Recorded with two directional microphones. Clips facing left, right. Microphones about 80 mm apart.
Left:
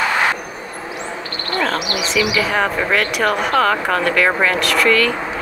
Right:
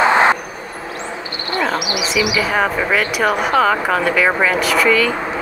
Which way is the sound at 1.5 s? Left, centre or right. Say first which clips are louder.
Right 1 dB; centre.